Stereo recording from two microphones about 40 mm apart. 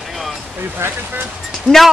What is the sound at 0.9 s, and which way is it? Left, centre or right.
Speech, right.